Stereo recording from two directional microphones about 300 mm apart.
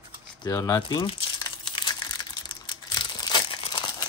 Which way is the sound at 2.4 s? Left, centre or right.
Centre.